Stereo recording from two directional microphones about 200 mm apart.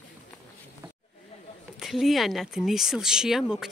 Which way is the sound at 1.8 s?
Centre (ahead or behind).